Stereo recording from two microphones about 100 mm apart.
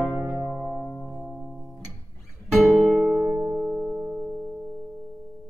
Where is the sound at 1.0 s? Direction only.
10° right (ahead or behind).